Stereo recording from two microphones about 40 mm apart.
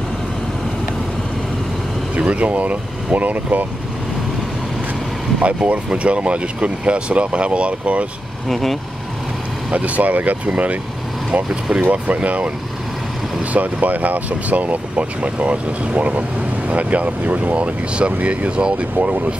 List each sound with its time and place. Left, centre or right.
2.1 s speech: right
5.4 s speech: right
8.5 s speech: centre
9.7 s speech: right
11.8 s speech: right
18.9 s speech: right